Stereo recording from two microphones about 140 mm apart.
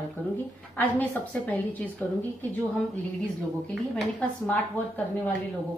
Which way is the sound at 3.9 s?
10° left (ahead or behind).